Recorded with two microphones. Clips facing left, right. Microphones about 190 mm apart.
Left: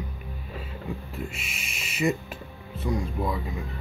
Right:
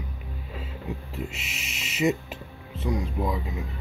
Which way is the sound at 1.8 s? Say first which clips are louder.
Right 2 dB; 20° right (ahead or behind).